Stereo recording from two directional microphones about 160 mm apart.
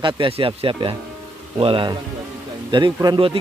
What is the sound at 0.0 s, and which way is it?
A man's voice, 35° right (ahead or behind).